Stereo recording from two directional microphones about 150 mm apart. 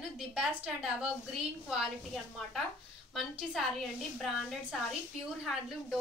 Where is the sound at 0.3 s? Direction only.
5° right (ahead or behind).